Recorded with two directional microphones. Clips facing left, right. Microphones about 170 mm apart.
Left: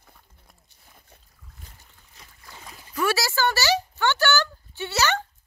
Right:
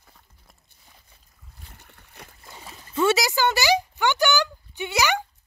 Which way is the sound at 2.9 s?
25° right (ahead or behind).